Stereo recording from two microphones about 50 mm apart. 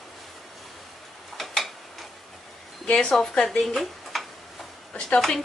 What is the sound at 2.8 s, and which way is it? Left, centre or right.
Speech, left.